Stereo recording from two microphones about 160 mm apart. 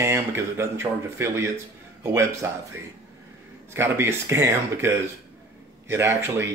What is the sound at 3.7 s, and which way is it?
Speech, 15° right (ahead or behind).